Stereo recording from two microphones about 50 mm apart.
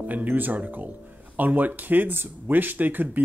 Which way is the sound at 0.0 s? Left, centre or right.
Right.